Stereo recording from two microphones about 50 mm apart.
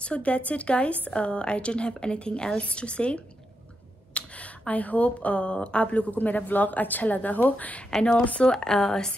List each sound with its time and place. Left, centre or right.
0.0 s speech: left
8.5 s speech: centre